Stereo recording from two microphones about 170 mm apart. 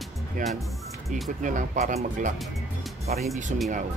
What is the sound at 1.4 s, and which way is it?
Speech, 50° right (ahead or behind).